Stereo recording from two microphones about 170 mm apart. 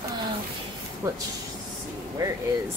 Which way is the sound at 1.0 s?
15° right (ahead or behind).